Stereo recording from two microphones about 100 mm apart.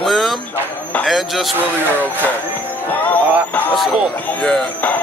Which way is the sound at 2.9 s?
15° left (ahead or behind).